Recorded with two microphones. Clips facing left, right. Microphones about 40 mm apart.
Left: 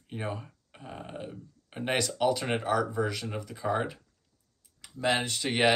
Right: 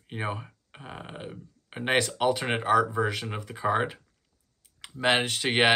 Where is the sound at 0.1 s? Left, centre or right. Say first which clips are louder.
Right 3 dB; right.